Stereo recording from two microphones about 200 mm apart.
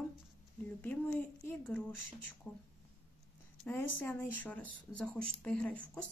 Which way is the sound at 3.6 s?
10° left (ahead or behind).